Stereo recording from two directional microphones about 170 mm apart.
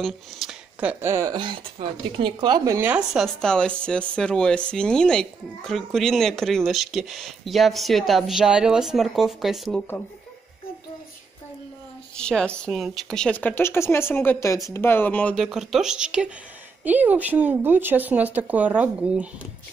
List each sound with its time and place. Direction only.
0.0 s speech: centre (ahead or behind)
12.2 s speech: 5° left (ahead or behind)
15.4 s speech: centre (ahead or behind)